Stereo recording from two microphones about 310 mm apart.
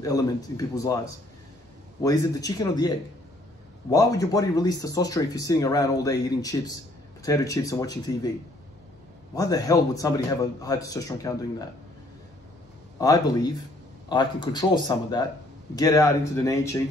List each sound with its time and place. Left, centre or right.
0.0 s speech: centre
2.0 s speech: centre
3.9 s speech: centre
9.3 s speech: centre
13.0 s speech: centre